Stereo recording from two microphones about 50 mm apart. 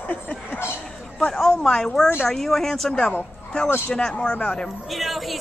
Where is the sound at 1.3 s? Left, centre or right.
Centre.